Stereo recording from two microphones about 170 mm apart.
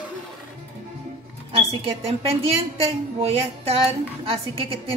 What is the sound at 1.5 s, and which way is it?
A woman's voice, 35° right (ahead or behind).